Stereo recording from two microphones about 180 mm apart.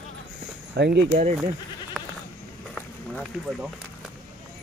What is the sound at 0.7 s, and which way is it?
Speech, 65° right (ahead or behind).